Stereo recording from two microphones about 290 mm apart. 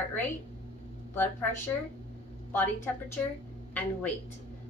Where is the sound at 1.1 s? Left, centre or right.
Centre.